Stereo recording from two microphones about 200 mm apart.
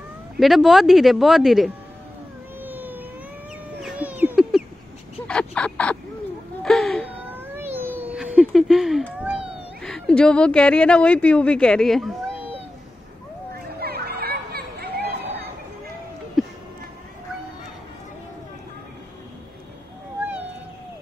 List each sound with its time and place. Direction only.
0.4 s speech: centre (ahead or behind)
2.6 s a sound: 10° right (ahead or behind); by 5.9 s 5° left (ahead or behind)
6.6 s wail: centre (ahead or behind)
7.2 s cat: 10° right (ahead or behind)
13.7 s chatter: 50° right (ahead or behind)